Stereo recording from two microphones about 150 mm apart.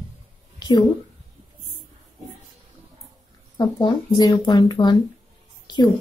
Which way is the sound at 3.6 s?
30° left (ahead or behind).